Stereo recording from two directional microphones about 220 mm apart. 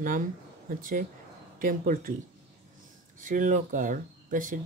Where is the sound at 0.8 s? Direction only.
40° right (ahead or behind).